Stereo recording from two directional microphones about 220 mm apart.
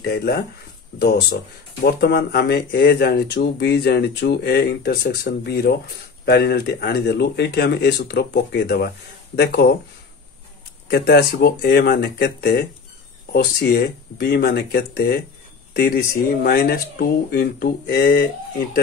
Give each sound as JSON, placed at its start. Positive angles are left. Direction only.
{"t": 0.0, "sound": "speech", "side_deg": 45}
{"t": 10.9, "sound": "speech", "side_deg": 45}